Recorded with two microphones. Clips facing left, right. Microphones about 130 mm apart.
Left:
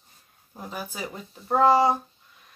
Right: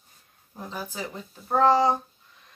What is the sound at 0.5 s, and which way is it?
Speech, 10° left (ahead or behind).